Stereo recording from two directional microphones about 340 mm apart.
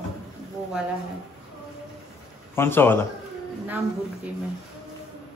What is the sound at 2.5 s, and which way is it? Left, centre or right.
Speech, centre.